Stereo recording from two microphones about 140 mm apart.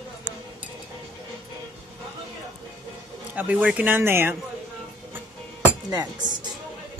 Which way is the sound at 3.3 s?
10° right (ahead or behind).